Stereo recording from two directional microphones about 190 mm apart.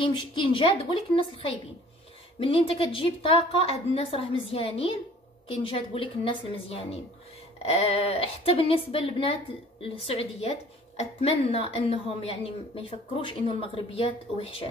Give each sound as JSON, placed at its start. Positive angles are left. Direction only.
{"t": 0.0, "sound": "a woman's voice", "side_deg": 25}